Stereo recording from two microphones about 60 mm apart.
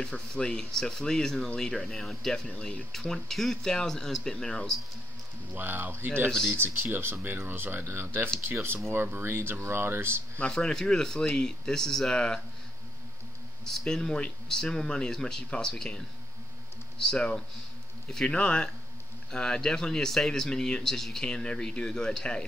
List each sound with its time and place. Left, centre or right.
0.1 s a man's voice: centre
2.4 s speech: left
2.9 s a man's voice: centre
5.5 s speech: right
10.4 s a man's voice: centre
13.7 s a man's voice: centre
17.0 s a man's voice: centre